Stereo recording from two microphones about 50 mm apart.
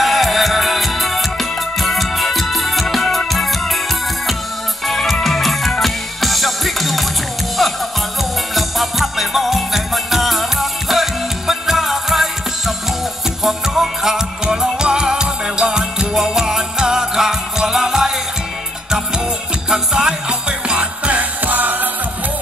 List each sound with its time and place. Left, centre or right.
0.0 s music: centre
4.8 s music: centre
8.2 s music: centre; by 21.8 s right